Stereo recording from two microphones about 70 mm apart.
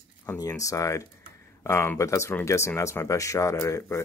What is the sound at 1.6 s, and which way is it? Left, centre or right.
Speech, left.